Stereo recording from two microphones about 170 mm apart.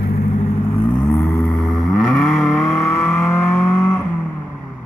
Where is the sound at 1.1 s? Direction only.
15° left (ahead or behind).